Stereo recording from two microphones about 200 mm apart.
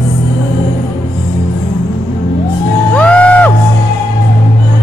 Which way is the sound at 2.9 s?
5° left (ahead or behind).